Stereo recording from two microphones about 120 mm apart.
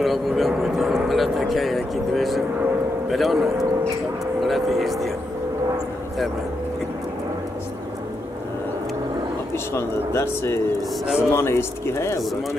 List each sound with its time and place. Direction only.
0.0 s speech: centre (ahead or behind)
9.8 s speech: 20° left (ahead or behind)